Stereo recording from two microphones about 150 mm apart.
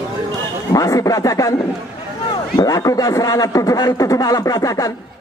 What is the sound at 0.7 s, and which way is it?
A man's voice, 25° left (ahead or behind).